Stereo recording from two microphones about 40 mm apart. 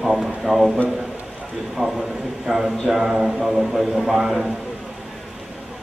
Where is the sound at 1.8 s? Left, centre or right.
Centre.